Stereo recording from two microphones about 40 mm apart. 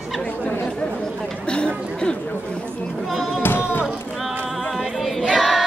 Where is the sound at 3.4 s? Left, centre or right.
Left.